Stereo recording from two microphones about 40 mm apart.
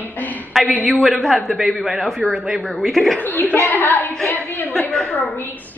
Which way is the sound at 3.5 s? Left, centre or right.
Left.